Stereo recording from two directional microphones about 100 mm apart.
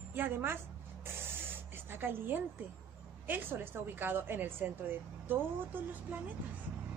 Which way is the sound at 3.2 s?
20° right (ahead or behind).